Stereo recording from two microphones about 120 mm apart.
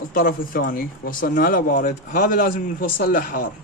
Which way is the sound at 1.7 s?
90° left.